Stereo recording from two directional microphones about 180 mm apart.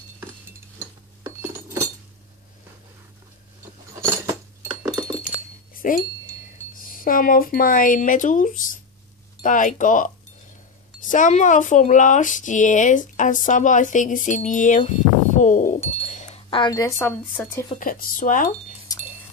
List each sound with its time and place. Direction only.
1.4 s chink: 15° right (ahead or behind)
3.9 s cutlery: 20° right (ahead or behind)
5.7 s a sound: 50° left (ahead or behind)
6.8 s speech: 50° left (ahead or behind)
16.0 s wind chime: 40° left (ahead or behind); by 17.1 s 20° left (ahead or behind)
17.7 s speech: 50° left (ahead or behind)
18.9 s wind chime: 20° left (ahead or behind)